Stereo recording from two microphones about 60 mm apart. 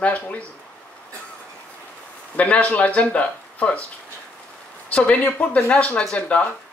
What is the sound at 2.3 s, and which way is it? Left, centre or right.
Speech, left.